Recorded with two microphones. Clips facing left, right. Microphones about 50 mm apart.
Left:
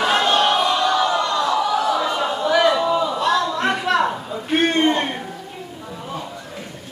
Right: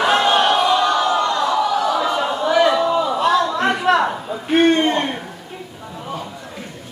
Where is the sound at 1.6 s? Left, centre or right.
Centre.